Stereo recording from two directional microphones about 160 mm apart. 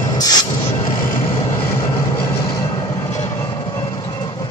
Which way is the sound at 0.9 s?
15° left (ahead or behind).